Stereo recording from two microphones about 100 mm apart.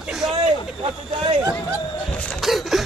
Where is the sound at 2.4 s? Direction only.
Centre (ahead or behind).